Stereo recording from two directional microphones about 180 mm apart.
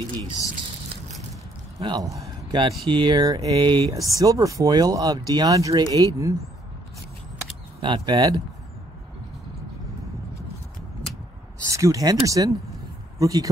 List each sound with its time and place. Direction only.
1.8 s speech: 20° right (ahead or behind)
7.8 s speech: 25° right (ahead or behind)
11.6 s speech: 15° right (ahead or behind)